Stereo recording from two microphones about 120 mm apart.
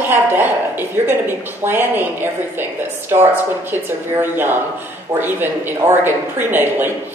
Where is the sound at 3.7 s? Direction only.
20° right (ahead or behind).